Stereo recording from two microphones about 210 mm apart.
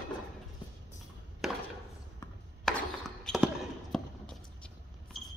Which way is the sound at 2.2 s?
15° left (ahead or behind).